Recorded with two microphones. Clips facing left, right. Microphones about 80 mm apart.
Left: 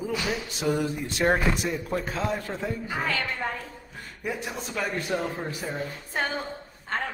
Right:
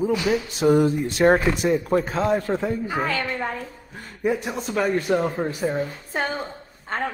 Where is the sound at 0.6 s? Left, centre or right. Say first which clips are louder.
Right 9 dB; right.